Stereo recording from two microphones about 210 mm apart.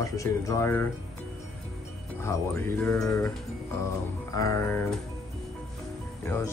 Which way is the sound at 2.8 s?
5° left (ahead or behind).